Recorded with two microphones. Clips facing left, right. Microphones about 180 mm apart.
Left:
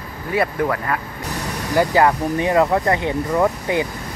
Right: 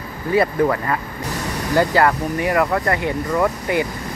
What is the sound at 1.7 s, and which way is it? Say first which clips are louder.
Speech: left 1 dB; 15° left (ahead or behind).